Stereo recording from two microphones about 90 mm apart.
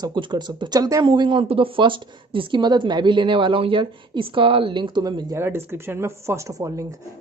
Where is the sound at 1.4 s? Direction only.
90° right; by 5.3 s 55° right (ahead or behind).